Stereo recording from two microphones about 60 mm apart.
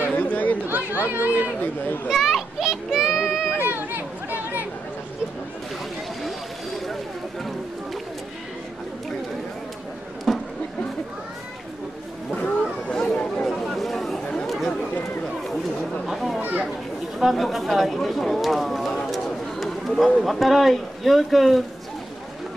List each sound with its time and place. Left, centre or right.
0.1 s chatter: left
0.7 s speech: right
2.0 s children playing: centre
3.5 s chatter: right
10.3 s a sound: centre
12.8 s chatter: centre
13.5 s chatter: centre
14.2 s chatter: centre
16.1 s a sound: centre
16.3 s children playing: right
17.2 s speech: centre